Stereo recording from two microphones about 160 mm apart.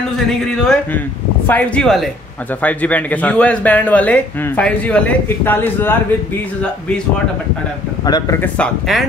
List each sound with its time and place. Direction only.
0.3 s speech: 5° left (ahead or behind)
8.0 s speech: 25° left (ahead or behind)
8.4 s speech: 5° left (ahead or behind)